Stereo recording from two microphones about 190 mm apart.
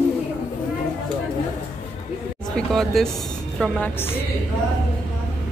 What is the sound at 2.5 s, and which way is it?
A woman's voice, centre (ahead or behind).